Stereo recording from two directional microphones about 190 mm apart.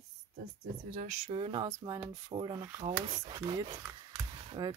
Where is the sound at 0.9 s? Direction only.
45° right (ahead or behind).